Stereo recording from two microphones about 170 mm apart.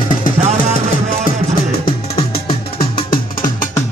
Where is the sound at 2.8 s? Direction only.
30° left (ahead or behind).